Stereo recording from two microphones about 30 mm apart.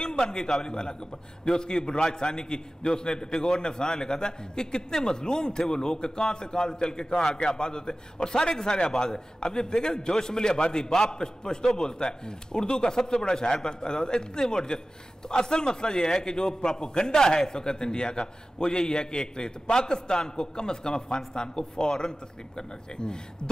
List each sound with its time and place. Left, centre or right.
0.3 s a man's voice: centre